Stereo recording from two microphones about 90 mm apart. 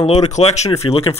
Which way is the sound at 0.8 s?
75° left (ahead or behind).